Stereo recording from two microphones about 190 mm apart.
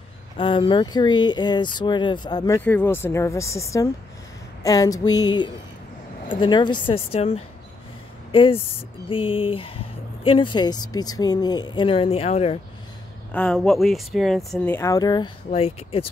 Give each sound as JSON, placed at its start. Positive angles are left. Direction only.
{"t": 0.4, "sound": "speech", "side_deg": 25}
{"t": 13.3, "sound": "speech", "side_deg": 5}